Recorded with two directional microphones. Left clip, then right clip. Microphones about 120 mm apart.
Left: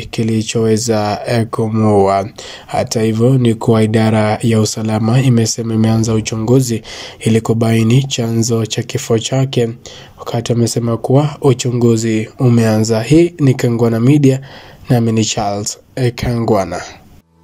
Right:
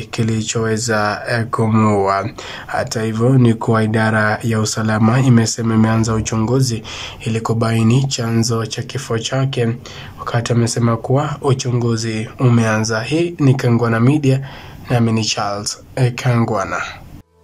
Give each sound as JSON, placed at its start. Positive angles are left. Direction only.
{"t": 0.1, "sound": "speech", "side_deg": 25}
{"t": 1.7, "sound": "speech", "side_deg": 0}
{"t": 2.0, "sound": "speech", "side_deg": 30}
{"t": 6.4, "sound": "speech", "side_deg": 30}